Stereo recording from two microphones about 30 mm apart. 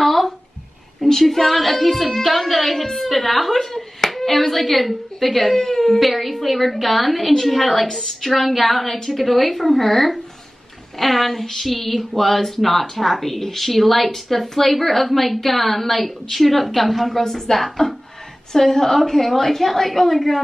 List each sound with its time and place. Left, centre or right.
0.0 s a sound: centre
1.0 s a woman's voice: centre
5.9 s a woman's voice: centre
17.1 s a woman's voice: centre